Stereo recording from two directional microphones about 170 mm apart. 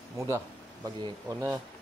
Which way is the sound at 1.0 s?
20° right (ahead or behind).